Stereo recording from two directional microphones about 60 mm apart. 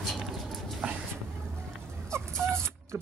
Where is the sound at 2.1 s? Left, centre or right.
Right.